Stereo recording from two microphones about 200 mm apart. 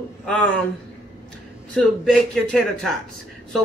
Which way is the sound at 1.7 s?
5° left (ahead or behind).